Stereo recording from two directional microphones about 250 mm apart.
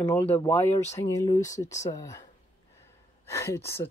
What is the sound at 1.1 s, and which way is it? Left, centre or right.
Speech, centre.